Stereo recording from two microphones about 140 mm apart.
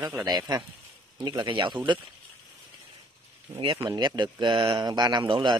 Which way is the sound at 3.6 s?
40° right (ahead or behind).